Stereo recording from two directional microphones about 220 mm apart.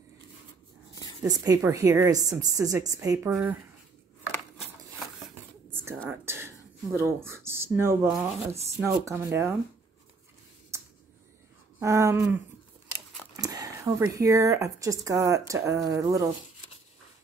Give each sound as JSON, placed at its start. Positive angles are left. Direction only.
{"t": 1.2, "sound": "speech", "side_deg": -15}
{"t": 4.6, "sound": "a sound", "side_deg": 0}
{"t": 6.0, "sound": "speech", "side_deg": -10}
{"t": 11.8, "sound": "speech", "side_deg": -15}
{"t": 13.4, "sound": "speech", "side_deg": -15}